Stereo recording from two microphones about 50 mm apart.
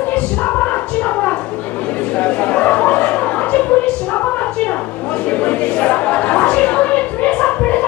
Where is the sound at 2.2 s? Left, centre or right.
Left.